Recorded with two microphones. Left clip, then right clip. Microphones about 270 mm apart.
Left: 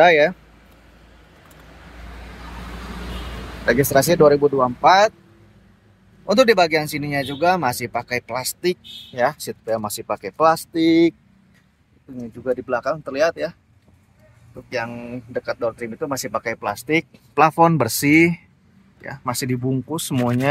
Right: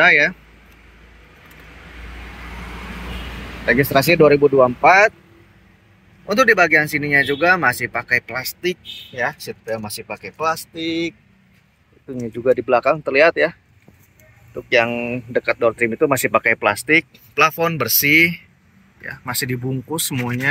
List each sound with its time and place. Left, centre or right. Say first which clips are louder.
0.0 s speech: even; centre
3.6 s speech: right 1 dB; centre
6.2 s speech: right 1 dB; centre
12.2 s speech: right 7 dB; right
13.0 s speech: right 5 dB; centre
14.7 s speech: right 10 dB; right
16.8 s speech: right 2 dB; centre
17.4 s speech: left 2 dB; centre